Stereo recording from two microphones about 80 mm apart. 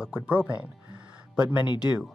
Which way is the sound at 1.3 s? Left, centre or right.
Centre.